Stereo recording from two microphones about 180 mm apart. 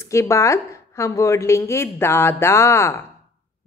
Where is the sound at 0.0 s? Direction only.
15° left (ahead or behind).